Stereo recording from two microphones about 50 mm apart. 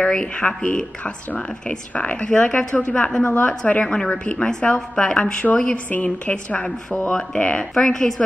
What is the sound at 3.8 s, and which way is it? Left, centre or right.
Speech, centre.